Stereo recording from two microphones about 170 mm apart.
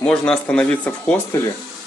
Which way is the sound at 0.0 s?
5° left (ahead or behind).